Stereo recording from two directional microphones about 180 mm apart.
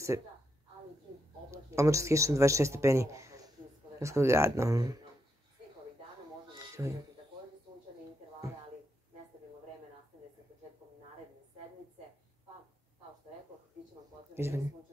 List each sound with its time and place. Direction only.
1.5 s speech: 15° right (ahead or behind)
6.8 s speech: 15° right (ahead or behind)
14.3 s speech: 15° right (ahead or behind)